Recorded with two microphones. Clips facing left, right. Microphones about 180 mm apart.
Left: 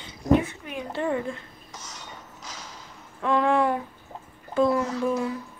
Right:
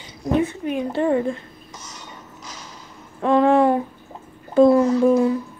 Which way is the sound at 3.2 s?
35° right (ahead or behind).